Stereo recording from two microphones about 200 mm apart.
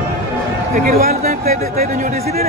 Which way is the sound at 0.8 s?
45° right (ahead or behind).